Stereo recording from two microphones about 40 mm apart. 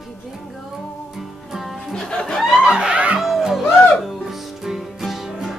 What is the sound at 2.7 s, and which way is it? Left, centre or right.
Music, right.